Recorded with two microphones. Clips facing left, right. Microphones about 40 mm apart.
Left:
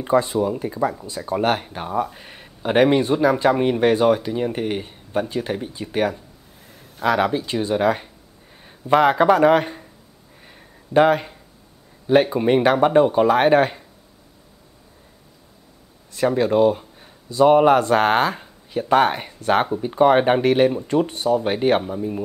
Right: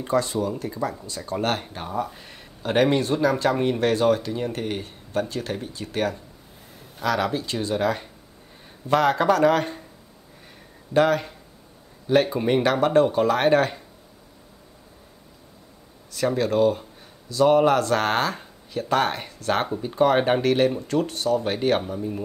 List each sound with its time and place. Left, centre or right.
0.0 s speech: centre
10.9 s speech: centre
16.1 s speech: centre